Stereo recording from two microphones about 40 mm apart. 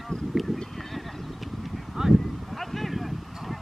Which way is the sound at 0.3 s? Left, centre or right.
Centre.